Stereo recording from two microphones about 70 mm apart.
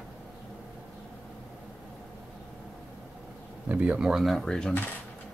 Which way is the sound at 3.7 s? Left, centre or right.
Right.